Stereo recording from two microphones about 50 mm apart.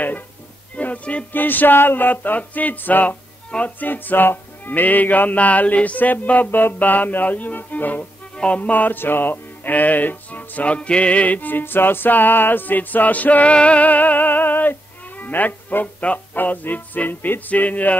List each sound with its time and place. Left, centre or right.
0.7 s music: left
1.3 s music: left